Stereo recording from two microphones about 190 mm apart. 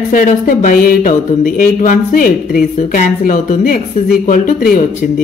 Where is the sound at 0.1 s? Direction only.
45° left (ahead or behind).